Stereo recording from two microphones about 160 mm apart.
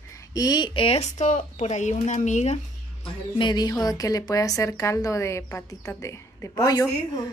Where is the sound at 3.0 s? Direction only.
30° left (ahead or behind).